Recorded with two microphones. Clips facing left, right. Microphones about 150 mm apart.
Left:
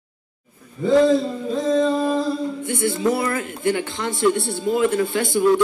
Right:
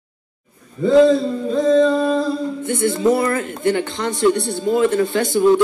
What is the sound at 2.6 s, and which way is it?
Speech, centre (ahead or behind).